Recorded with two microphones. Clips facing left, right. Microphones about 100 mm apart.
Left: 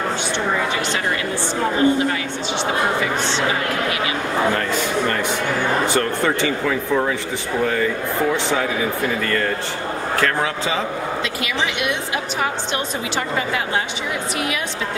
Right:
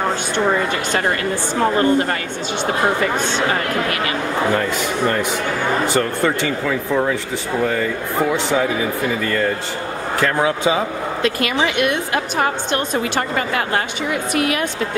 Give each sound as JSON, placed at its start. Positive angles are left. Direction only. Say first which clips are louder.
{"t": 1.8, "sound": "a woman's voice", "louder": "left 1 dB", "side_deg": -50}
{"t": 5.9, "sound": "speech", "louder": "right 1 dB", "side_deg": 0}
{"t": 10.4, "sound": "a man's voice", "louder": "right 5 dB", "side_deg": -15}
{"t": 11.2, "sound": "a woman's voice", "louder": "right 5 dB", "side_deg": -50}
{"t": 14.3, "sound": "a woman's voice", "louder": "right 7 dB", "side_deg": -50}